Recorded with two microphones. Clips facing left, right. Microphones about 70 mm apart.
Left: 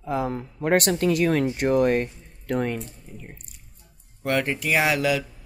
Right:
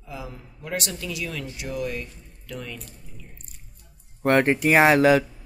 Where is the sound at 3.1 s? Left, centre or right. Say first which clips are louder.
Left 6 dB; left.